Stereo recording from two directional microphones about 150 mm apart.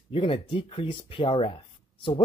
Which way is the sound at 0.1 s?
35° left (ahead or behind).